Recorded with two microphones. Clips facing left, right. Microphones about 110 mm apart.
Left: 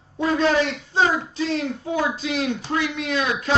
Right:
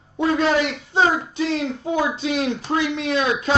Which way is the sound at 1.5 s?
20° right (ahead or behind).